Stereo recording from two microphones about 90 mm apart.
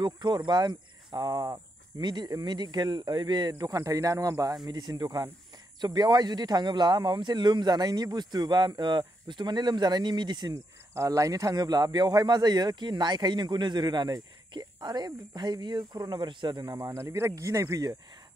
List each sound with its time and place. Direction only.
0.0 s speech: 55° right (ahead or behind); by 4.6 s 40° right (ahead or behind)
4.6 s speech: 50° right (ahead or behind)
11.0 s speech: 40° right (ahead or behind)